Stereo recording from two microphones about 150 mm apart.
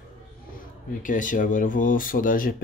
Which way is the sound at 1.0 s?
60° left (ahead or behind).